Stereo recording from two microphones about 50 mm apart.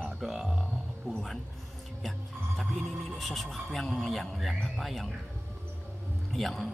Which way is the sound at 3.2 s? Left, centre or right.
Centre.